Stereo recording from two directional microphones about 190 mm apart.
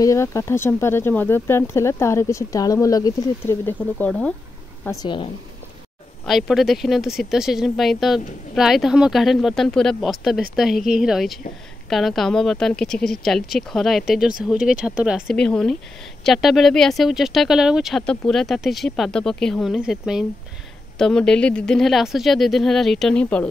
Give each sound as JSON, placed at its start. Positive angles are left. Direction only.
{"t": 0.0, "sound": "speech", "side_deg": 15}
{"t": 5.0, "sound": "speech", "side_deg": 25}
{"t": 6.2, "sound": "speech", "side_deg": 0}